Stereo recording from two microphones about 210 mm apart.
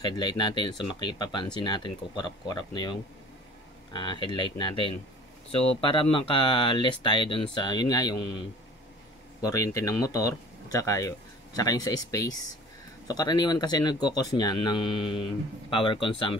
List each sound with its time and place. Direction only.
0.0 s speech: 20° left (ahead or behind)